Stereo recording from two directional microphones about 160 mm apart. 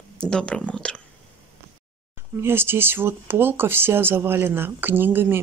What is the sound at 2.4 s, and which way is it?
Speech, 15° right (ahead or behind).